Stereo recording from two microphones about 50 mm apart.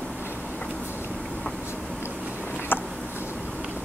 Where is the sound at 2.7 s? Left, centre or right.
Left.